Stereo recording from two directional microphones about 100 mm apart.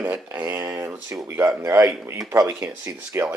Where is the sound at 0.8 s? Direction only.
25° right (ahead or behind).